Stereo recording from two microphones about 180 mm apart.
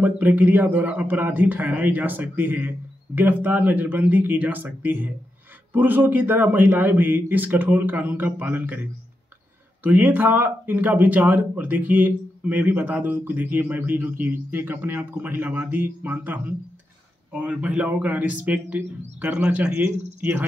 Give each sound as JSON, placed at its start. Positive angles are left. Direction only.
{"t": 0.0, "sound": "speech", "side_deg": -10}
{"t": 9.8, "sound": "speech", "side_deg": -10}